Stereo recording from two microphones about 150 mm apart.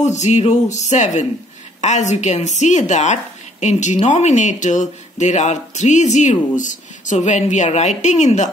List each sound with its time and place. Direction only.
0.0 s speech: 50° left (ahead or behind)